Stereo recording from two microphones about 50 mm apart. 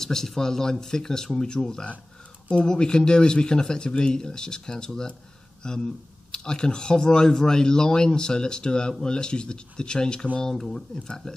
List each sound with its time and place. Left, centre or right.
0.0 s speech: centre